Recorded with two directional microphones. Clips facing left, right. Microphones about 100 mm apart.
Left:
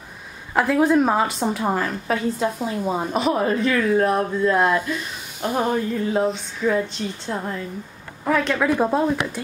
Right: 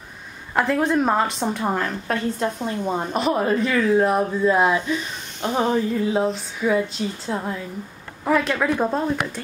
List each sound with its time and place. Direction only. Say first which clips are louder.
0.6 s a woman's voice: left 2 dB; 5° left (ahead or behind)
4.8 s a woman's voice: right 2 dB; 5° left (ahead or behind)